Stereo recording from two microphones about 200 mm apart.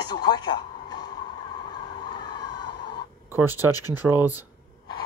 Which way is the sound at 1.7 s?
20° left (ahead or behind).